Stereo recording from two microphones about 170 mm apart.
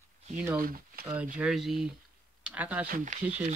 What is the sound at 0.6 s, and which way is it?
Speech, 55° right (ahead or behind).